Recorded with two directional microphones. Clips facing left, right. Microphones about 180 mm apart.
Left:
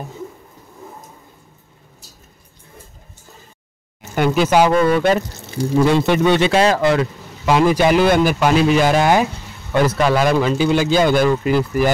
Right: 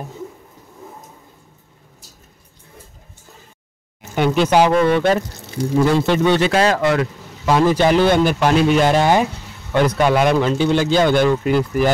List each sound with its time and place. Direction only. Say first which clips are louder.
4.1 s a man's voice: even; 5° left (ahead or behind)
5.5 s speech: left 1 dB; 25° left (ahead or behind)
7.4 s a man's voice: even; 10° left (ahead or behind)